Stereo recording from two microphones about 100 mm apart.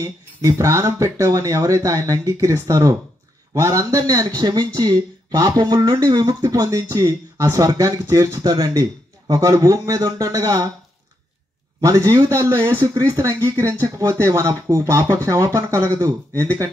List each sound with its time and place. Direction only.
0.0 s speech: 30° right (ahead or behind)
11.8 s speech: 40° right (ahead or behind)